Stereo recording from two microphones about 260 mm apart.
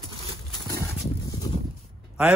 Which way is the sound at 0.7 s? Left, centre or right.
Centre.